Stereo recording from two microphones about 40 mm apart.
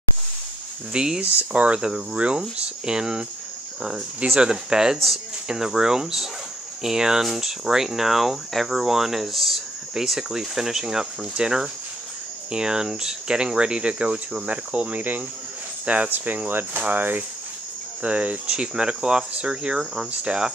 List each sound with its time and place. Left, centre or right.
0.9 s speech: centre
1.2 s speech: right
4.4 s speech: right
16.4 s speech: right
18.0 s speech: right
18.5 s speech: right